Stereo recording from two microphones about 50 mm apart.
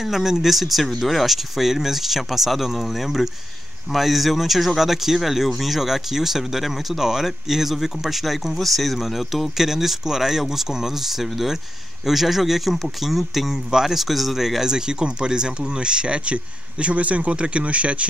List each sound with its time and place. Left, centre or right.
0.0 s speech: centre; by 18.0 s right